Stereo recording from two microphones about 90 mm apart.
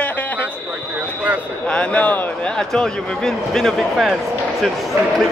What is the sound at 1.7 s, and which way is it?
Speech, 15° left (ahead or behind).